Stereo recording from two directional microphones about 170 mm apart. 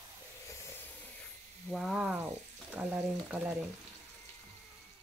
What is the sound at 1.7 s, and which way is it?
Sizzle, 5° right (ahead or behind).